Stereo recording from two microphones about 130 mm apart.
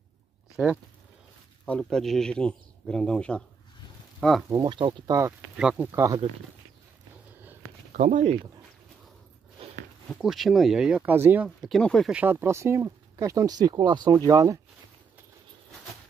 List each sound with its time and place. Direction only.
1.7 s a man's voice: 5° left (ahead or behind)
4.6 s speech: 40° right (ahead or behind)
5.6 s speech: 5° right (ahead or behind)
5.9 s speech: 20° right (ahead or behind)
7.9 s speech: 80° right
9.6 s a sound: 45° right (ahead or behind)
10.2 s speech: centre (ahead or behind); by 11.4 s 15° right (ahead or behind)
11.7 s speech: 5° left (ahead or behind)
12.1 s speech: 15° right (ahead or behind)